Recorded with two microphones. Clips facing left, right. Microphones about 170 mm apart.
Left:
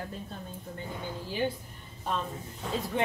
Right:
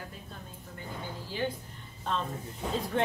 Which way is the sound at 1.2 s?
15° left (ahead or behind).